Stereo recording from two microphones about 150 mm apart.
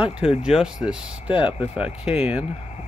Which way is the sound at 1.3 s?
35° left (ahead or behind).